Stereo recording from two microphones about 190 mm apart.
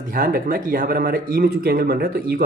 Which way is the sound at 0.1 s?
50° right (ahead or behind).